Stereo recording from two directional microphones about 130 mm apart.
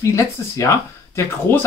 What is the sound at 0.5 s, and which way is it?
Speech, 20° left (ahead or behind).